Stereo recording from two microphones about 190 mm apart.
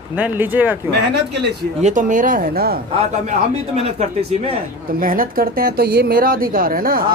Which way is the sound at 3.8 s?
30° right (ahead or behind).